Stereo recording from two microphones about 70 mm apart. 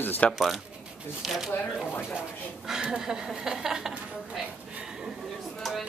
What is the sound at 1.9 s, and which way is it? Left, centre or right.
Speech, left.